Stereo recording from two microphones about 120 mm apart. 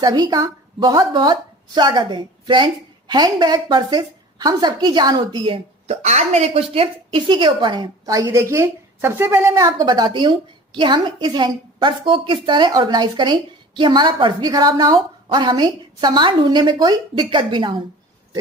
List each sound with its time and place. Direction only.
0.0 s a woman's voice: 35° right (ahead or behind)
5.9 s a woman's voice: 70° right (ahead or behind); by 9.7 s 25° right (ahead or behind)
9.7 s a woman's voice: 35° right (ahead or behind)